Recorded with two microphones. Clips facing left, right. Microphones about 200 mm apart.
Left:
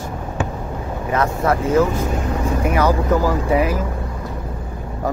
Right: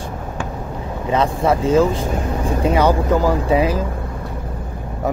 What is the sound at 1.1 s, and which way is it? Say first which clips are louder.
Speech: right 2 dB; 20° right (ahead or behind).